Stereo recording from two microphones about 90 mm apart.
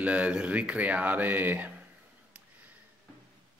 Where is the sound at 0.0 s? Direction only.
15° right (ahead or behind).